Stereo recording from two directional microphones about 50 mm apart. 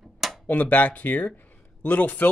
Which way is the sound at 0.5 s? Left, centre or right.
Left.